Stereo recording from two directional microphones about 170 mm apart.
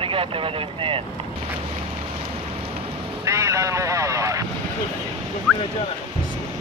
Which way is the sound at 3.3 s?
15° right (ahead or behind).